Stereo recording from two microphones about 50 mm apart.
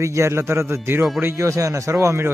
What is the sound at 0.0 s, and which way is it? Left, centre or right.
Speech, right.